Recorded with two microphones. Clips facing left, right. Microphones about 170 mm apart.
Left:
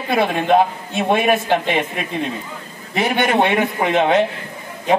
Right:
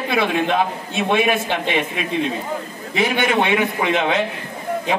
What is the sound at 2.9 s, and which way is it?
A man's voice, 45° left (ahead or behind).